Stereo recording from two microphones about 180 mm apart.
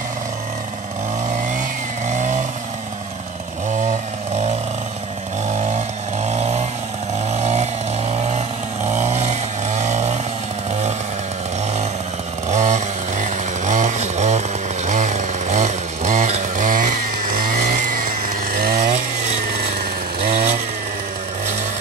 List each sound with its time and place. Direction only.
2.0 s vehicle: 45° right (ahead or behind)
6.2 s vehicle: 40° right (ahead or behind)
12.4 s chainsaw: 40° right (ahead or behind)
14.9 s vehicle: 45° right (ahead or behind)
20.2 s chainsaw: 55° right (ahead or behind)